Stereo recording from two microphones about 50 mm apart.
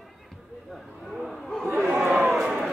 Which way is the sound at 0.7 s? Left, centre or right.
Centre.